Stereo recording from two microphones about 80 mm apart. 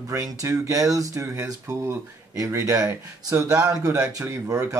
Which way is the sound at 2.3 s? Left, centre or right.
Right.